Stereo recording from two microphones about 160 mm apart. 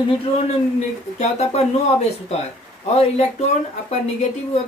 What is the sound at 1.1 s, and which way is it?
Speech, 45° left (ahead or behind).